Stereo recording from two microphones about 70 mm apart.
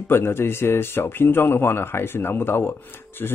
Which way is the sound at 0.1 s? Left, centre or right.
Left.